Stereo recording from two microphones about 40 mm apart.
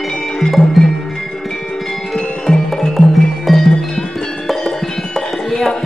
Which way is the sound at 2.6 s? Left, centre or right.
Centre.